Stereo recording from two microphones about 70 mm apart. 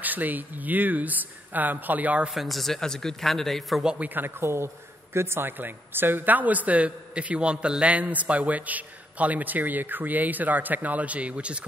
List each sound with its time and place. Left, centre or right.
0.0 s a man's voice: right
2.3 s a man's voice: centre
4.0 s a woman's voice: right